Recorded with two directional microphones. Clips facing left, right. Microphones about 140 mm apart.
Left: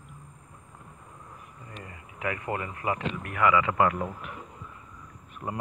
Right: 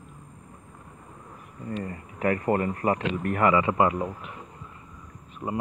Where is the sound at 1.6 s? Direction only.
40° right (ahead or behind); by 4.0 s 25° right (ahead or behind).